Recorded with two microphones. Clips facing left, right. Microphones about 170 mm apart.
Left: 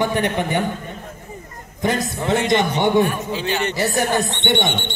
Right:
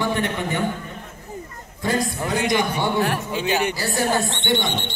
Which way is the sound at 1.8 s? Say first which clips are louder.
Left 2 dB; 20° left (ahead or behind).